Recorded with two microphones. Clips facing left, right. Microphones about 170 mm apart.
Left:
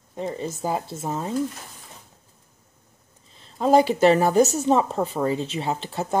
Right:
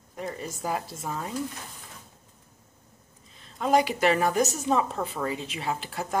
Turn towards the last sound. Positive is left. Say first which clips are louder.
# left 4 dB
turn(degrees=25)  # may be behind; listen again after turning